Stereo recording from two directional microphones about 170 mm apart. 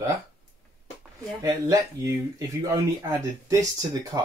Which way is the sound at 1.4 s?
20° right (ahead or behind).